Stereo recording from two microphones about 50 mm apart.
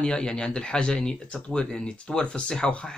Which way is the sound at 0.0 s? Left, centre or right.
Centre.